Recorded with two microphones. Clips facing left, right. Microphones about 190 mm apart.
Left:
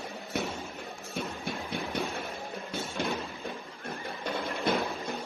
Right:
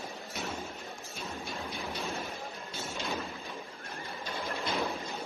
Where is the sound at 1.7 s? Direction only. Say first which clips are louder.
Left 6 dB; 60° left (ahead or behind).